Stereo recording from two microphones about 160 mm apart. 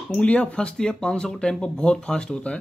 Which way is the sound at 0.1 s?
5° left (ahead or behind).